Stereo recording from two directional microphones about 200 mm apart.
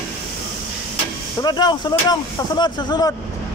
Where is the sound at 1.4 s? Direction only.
20° left (ahead or behind).